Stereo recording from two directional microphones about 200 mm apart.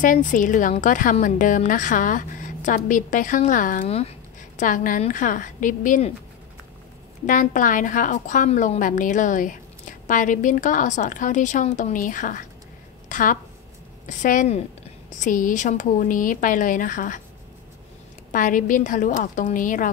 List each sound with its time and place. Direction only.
0.0 s a woman's voice: 40° left (ahead or behind)
3.8 s a woman's voice: 30° left (ahead or behind)
4.6 s a woman's voice: 40° left (ahead or behind)
7.2 s a woman's voice: 40° left (ahead or behind)
18.3 s a woman's voice: 40° left (ahead or behind)